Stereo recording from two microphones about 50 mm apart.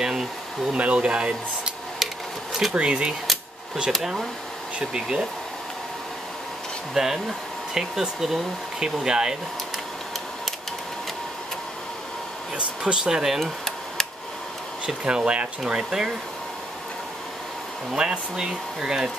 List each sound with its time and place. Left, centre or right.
0.0 s speech: centre
0.7 s speech: right
2.7 s speech: right
3.9 s speech: centre
4.7 s speech: centre
6.9 s speech: centre
12.5 s speech: centre
13.4 s a sound: centre
15.0 s speech: right
15.6 s speech: centre
17.9 s speech: centre